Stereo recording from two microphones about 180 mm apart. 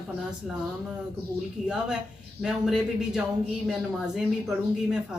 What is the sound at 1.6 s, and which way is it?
Speech, 5° right (ahead or behind).